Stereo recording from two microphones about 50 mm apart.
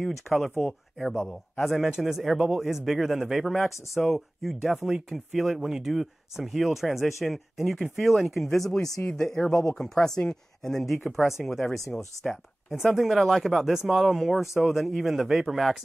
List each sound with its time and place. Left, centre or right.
0.0 s a man's voice: centre
0.9 s speech: left
1.2 s a man's voice: centre
9.1 s speech: centre
12.7 s a man's voice: centre